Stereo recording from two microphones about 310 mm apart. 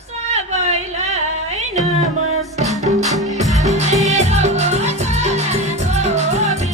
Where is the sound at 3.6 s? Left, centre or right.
Right.